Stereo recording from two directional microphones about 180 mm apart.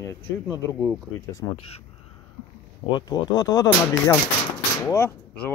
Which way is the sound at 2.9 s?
25° left (ahead or behind).